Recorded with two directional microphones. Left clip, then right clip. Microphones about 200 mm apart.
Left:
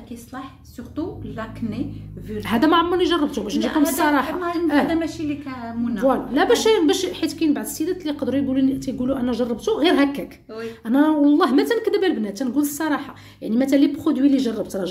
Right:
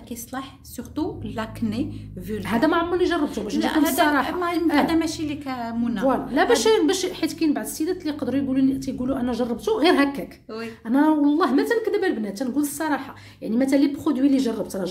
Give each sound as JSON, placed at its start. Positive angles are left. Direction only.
{"t": 0.9, "sound": "a woman's voice", "side_deg": -60}
{"t": 2.4, "sound": "a woman's voice", "side_deg": 10}
{"t": 4.9, "sound": "a woman's voice", "side_deg": -60}
{"t": 6.0, "sound": "a woman's voice", "side_deg": 5}